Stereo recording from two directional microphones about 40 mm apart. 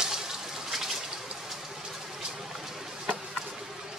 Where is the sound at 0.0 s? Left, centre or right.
Centre.